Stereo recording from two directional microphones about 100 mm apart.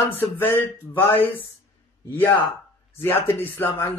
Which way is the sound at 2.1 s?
20° left (ahead or behind).